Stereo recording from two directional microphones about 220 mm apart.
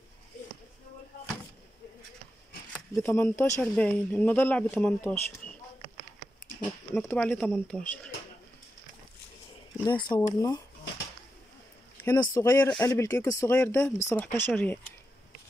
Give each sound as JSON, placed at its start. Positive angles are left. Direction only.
{"t": 3.0, "sound": "speech", "side_deg": 10}
{"t": 6.9, "sound": "speech", "side_deg": 5}
{"t": 9.8, "sound": "speech", "side_deg": 20}
{"t": 12.0, "sound": "speech", "side_deg": 10}